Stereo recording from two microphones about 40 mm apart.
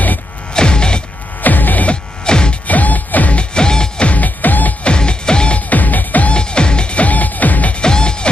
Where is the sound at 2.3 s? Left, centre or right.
Left.